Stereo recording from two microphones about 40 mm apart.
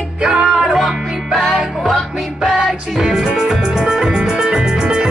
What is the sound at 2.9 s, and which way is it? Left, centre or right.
Music, centre.